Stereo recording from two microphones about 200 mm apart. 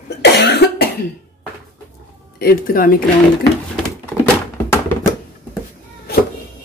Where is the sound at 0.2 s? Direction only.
55° left (ahead or behind).